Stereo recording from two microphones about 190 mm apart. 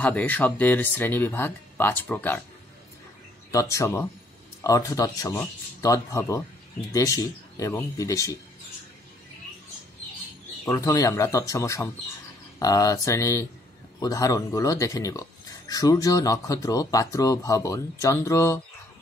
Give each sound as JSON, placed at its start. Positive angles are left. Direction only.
{"t": 0.0, "sound": "speech", "side_deg": 10}
{"t": 3.5, "sound": "speech", "side_deg": 15}
{"t": 10.6, "sound": "speech", "side_deg": 20}